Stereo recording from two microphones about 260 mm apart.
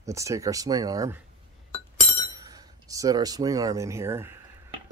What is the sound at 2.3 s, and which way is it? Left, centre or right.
Speech, centre.